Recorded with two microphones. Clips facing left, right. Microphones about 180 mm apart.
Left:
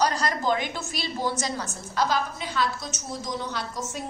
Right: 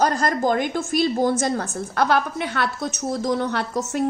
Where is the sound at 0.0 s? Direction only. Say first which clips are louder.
Right 5 dB; 50° right (ahead or behind).